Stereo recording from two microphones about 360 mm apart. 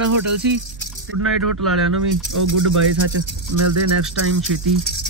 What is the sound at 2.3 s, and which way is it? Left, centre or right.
Speech, right.